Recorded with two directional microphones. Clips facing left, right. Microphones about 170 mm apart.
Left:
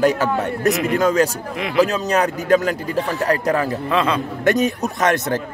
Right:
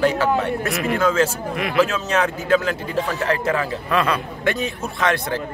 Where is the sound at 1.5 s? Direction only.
20° left (ahead or behind).